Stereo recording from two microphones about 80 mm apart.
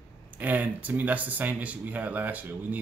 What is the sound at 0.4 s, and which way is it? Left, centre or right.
Speech, right.